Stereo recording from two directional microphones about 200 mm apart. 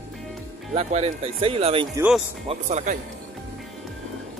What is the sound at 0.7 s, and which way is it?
Speech, 30° right (ahead or behind).